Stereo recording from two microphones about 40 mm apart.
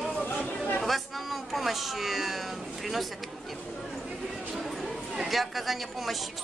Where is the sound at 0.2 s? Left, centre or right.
Left.